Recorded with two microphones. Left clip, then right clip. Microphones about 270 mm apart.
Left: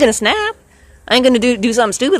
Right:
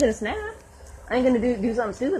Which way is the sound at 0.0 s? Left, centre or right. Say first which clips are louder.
Left 11 dB; left.